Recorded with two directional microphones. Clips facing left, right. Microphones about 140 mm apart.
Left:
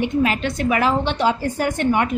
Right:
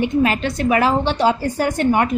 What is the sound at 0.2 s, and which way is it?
A woman's voice, 40° right (ahead or behind).